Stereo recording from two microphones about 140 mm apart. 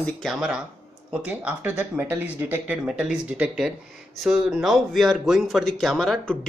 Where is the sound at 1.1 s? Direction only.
5° right (ahead or behind).